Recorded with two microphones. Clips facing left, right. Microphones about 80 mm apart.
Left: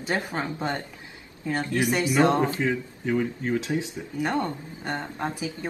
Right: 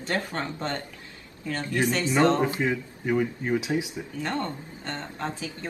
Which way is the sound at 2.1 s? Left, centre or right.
Centre.